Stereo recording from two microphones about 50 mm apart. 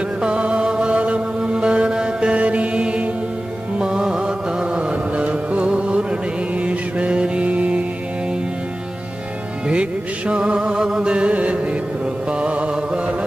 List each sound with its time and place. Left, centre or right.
0.2 s music: right
9.7 s music: right